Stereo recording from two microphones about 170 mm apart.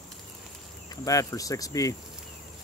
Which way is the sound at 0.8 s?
20° left (ahead or behind).